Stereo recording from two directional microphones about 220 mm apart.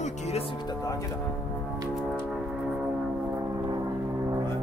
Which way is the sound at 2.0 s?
5° right (ahead or behind).